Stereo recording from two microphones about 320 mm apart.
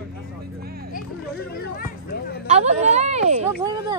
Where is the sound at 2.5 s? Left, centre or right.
Right.